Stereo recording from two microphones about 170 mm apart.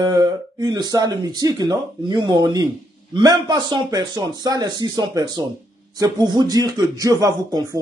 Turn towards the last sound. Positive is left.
turn(degrees=-20)  # may be behind; listen again after turning